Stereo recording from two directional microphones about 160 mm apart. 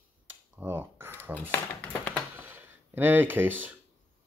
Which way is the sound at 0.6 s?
15° right (ahead or behind).